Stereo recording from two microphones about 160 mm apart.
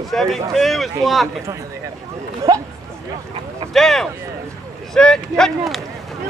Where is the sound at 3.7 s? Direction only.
Centre (ahead or behind).